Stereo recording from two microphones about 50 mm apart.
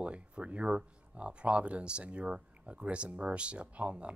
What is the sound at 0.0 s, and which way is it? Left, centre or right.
Speech, right.